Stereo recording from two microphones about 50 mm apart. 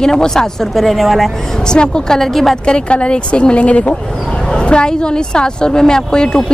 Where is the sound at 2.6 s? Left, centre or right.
Left.